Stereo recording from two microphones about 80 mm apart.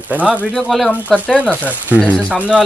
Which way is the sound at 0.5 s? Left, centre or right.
Centre.